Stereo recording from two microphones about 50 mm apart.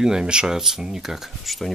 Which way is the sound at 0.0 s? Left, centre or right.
Centre.